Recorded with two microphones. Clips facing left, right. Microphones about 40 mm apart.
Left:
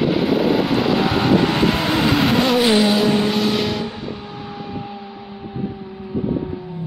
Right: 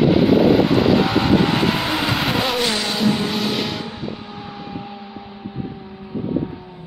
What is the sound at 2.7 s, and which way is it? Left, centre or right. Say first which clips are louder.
Vehicle: left 5 dB; centre.